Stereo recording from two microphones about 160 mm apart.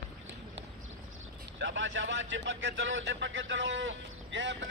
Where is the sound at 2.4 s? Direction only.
90° right.